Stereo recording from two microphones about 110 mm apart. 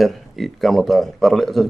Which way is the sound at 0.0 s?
Centre (ahead or behind).